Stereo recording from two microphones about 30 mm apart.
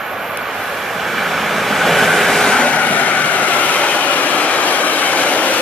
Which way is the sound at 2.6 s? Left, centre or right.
Left.